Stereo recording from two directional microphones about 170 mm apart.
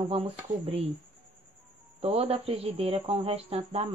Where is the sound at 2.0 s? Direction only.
35° right (ahead or behind).